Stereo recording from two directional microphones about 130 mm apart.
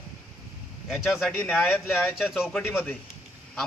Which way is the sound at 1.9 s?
5° right (ahead or behind).